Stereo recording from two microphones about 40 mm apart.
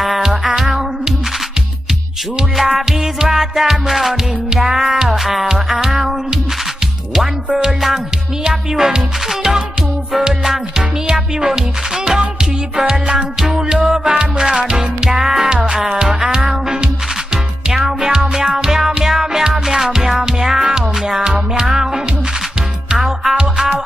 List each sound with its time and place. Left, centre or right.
0.0 s music: centre
2.5 s music: centre
7.5 s music: centre
11.1 s music: centre
15.4 s music: right
17.7 s music: centre
19.4 s music: centre